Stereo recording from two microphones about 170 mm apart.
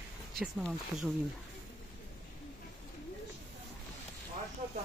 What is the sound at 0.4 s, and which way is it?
Speech, centre (ahead or behind).